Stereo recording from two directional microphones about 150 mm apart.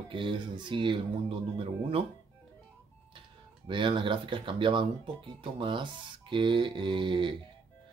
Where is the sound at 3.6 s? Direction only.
35° right (ahead or behind).